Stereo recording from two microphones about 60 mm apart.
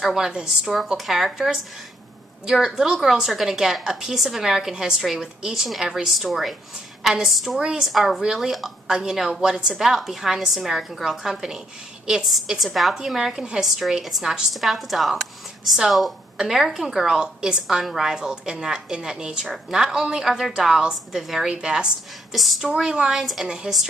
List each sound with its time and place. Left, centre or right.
0.0 s a woman's voice: centre
22.3 s a woman's voice: centre